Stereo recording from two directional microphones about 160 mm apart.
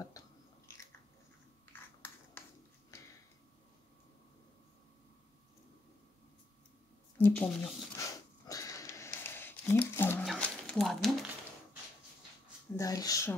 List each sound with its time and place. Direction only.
0.2 s biting: 20° left (ahead or behind)
1.7 s a sound: 15° left (ahead or behind)
7.2 s speech: 10° left (ahead or behind)
8.0 s sniff: 20° left (ahead or behind)
10.2 s a sound: centre (ahead or behind)
12.7 s speech: 20° left (ahead or behind)